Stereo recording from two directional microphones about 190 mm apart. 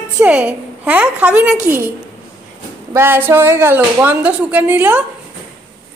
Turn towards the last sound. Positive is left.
turn(degrees=-10)  # may be behind; listen again after turning